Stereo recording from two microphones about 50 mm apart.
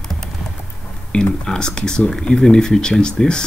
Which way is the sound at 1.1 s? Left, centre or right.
Centre.